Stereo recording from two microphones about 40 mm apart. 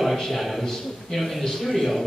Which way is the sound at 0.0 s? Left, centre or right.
Centre.